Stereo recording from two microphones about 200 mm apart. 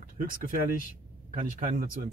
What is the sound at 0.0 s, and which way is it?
Speech, 45° right (ahead or behind).